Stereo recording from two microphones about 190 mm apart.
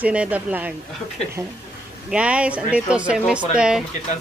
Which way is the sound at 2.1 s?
5° right (ahead or behind).